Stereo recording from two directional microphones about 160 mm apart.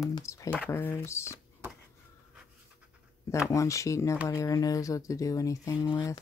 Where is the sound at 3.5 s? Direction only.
20° left (ahead or behind).